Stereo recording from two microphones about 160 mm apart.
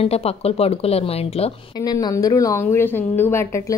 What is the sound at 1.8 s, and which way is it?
A woman's voice, 25° left (ahead or behind).